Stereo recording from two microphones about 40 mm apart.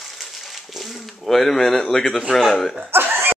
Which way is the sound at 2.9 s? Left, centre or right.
Right.